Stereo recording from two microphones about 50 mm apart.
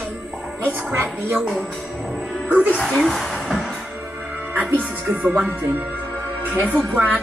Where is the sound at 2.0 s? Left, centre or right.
Centre.